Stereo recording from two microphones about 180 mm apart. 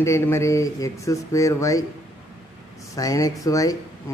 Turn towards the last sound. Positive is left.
turn(degrees=20)  # may be behind; listen again after turning